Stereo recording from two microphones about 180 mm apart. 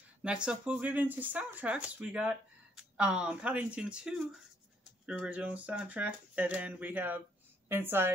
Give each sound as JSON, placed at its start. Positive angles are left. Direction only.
{"t": 0.2, "sound": "a woman's voice", "side_deg": -5}